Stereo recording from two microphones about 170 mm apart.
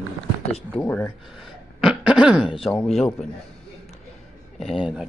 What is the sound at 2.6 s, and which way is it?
Speech, 5° left (ahead or behind).